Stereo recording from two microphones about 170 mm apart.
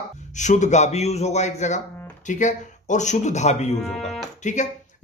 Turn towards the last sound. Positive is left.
turn(degrees=45)  # may be behind; listen again after turning